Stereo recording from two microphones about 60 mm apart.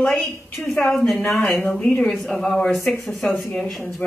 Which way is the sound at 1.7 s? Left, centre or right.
Centre.